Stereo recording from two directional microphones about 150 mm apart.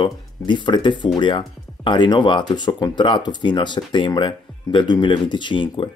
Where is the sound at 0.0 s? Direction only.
30° left (ahead or behind).